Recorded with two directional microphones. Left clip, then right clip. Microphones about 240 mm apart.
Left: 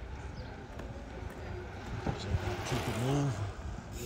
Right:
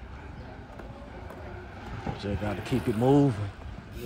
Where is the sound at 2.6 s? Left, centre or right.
Centre.